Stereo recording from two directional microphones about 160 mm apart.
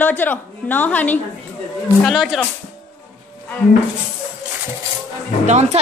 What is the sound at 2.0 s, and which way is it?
Speech, centre (ahead or behind).